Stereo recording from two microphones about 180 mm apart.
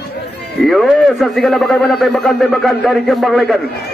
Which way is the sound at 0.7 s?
Centre (ahead or behind).